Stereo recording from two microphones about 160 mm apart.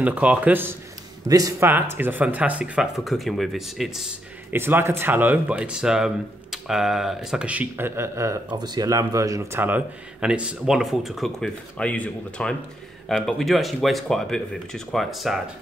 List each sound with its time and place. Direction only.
0.0 s speech: 10° right (ahead or behind)
4.5 s speech: 15° right (ahead or behind)